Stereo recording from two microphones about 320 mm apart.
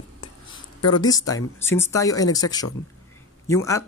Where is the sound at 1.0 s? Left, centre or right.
Centre.